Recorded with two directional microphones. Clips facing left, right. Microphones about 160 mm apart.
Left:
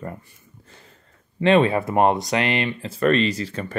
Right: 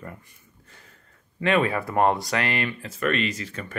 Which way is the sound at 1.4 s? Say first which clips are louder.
Left 6 dB; 25° left (ahead or behind).